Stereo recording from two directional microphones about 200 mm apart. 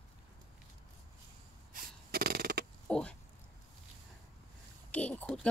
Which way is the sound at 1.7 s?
45° right (ahead or behind).